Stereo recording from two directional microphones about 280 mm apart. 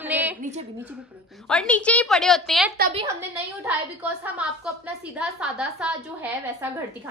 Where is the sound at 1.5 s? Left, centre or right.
Centre.